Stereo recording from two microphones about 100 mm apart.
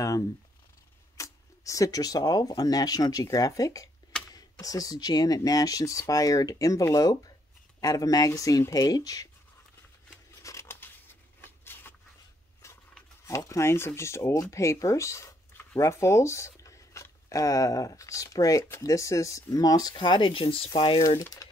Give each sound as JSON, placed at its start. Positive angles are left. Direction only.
{"t": 1.1, "sound": "speech", "side_deg": 30}
{"t": 10.4, "sound": "a sound", "side_deg": 30}
{"t": 13.2, "sound": "speech", "side_deg": 30}
{"t": 21.2, "sound": "speech", "side_deg": 35}